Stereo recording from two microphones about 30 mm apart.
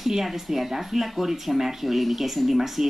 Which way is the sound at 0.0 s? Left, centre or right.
Centre.